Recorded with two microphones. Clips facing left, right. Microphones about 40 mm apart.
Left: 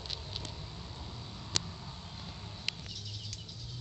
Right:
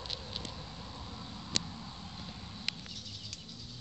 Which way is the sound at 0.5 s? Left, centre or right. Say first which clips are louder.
Right 1 dB; centre.